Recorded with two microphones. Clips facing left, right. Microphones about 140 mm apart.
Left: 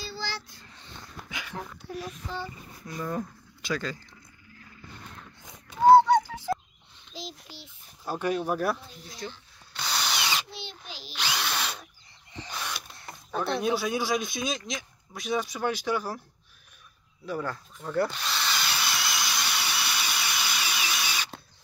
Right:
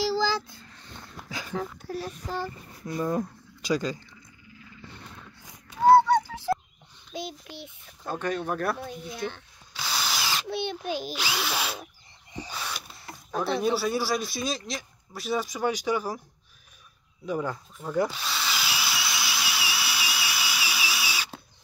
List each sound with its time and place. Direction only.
1.3 s a sound: 35° right (ahead or behind)
3.0 s speech: 20° right (ahead or behind)
5.4 s a sound: 20° left (ahead or behind)
8.1 s speech: 10° left (ahead or behind)
8.7 s speech: 60° right (ahead or behind)
9.8 s power tool: centre (ahead or behind)
10.5 s speech: 60° right (ahead or behind)
11.1 s speech: 5° right (ahead or behind)
17.3 s speech: 15° right (ahead or behind)
17.7 s drill: 5° right (ahead or behind)